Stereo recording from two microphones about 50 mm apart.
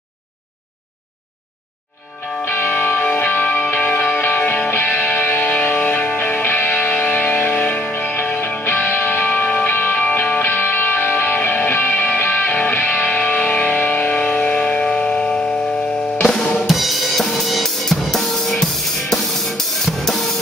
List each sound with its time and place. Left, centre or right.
2.4 s music: left
7.5 s music: left
7.9 s music: left; by 15.5 s centre
16.6 s drum kit: centre